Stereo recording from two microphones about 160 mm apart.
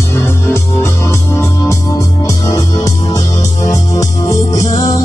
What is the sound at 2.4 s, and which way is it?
Music, 20° left (ahead or behind).